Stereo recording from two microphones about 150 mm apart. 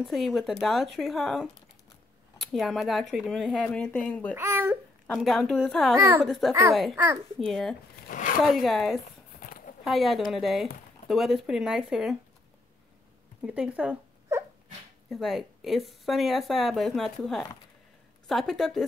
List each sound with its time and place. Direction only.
0.0 s speech: centre (ahead or behind)
4.4 s babbling: 15° right (ahead or behind)
5.0 s speech: 5° left (ahead or behind)
5.9 s speech: 15° right (ahead or behind)
6.2 s speech: centre (ahead or behind)
8.1 s speech: 60° left (ahead or behind)
8.5 s speech: centre (ahead or behind)
9.4 s a sound: 70° left (ahead or behind)
9.8 s speech: centre (ahead or behind)
13.4 s a sound: 10° right (ahead or behind)
15.0 s speech: centre (ahead or behind)